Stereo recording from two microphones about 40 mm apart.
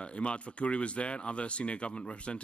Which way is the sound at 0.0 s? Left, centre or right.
Left.